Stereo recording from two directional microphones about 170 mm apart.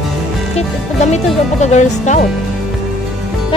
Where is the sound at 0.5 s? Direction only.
40° left (ahead or behind).